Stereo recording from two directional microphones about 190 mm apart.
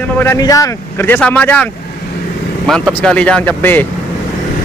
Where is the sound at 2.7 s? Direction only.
5° left (ahead or behind).